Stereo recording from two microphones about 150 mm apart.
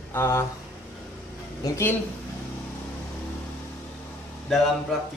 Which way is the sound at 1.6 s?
15° left (ahead or behind).